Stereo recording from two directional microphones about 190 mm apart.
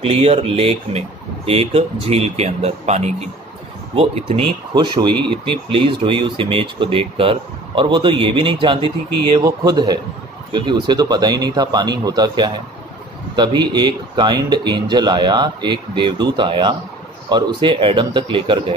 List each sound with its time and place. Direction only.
0.0 s speech: 30° right (ahead or behind)